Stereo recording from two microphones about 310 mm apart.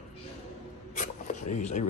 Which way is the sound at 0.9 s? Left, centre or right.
Left.